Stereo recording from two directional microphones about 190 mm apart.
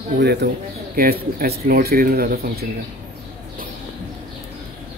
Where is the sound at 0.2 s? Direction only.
60° right (ahead or behind).